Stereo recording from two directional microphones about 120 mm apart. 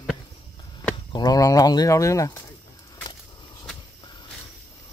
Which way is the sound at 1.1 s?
35° left (ahead or behind).